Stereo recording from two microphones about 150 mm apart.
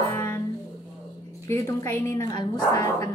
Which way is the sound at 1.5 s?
15° left (ahead or behind).